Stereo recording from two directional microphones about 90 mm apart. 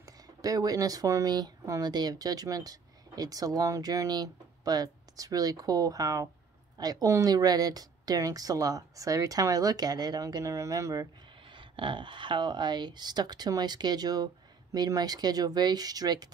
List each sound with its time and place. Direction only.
0.0 s speech: 40° right (ahead or behind)
11.4 s speech: 65° right (ahead or behind); by 16.3 s 45° right (ahead or behind)